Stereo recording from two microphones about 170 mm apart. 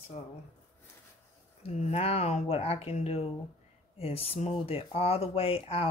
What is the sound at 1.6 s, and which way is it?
Speech, 35° left (ahead or behind).